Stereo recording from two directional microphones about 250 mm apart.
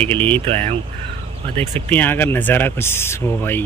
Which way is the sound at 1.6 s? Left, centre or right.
Centre.